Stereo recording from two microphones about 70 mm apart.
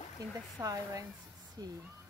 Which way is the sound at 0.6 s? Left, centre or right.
Right.